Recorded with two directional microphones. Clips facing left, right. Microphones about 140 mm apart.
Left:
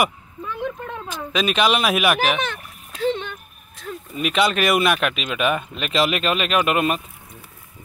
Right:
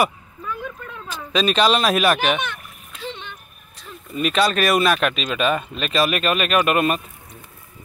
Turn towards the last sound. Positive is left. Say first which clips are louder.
# right 1 dB
turn(degrees=15)  # may be behind; listen again after turning